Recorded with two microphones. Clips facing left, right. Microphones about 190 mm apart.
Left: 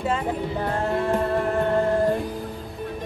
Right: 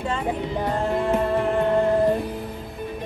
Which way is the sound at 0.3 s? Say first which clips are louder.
Right 1 dB; 10° right (ahead or behind).